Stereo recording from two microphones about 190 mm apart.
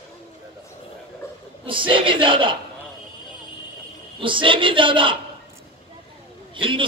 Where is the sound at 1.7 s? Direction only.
25° right (ahead or behind).